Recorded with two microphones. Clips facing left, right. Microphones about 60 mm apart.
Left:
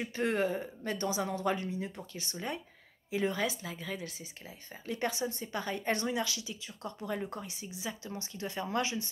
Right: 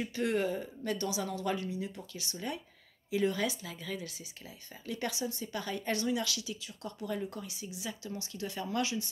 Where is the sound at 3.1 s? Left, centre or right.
Left.